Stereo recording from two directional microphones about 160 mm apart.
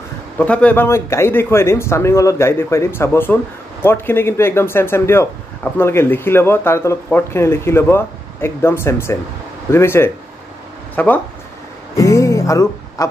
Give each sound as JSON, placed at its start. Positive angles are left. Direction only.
{"t": 0.4, "sound": "speech", "side_deg": 10}
{"t": 12.0, "sound": "music", "side_deg": 20}